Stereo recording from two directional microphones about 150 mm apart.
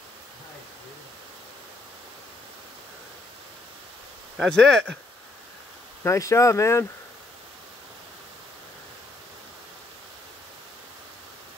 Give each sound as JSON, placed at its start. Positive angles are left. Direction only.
{"t": 4.4, "sound": "speech", "side_deg": 5}
{"t": 6.0, "sound": "speech", "side_deg": 20}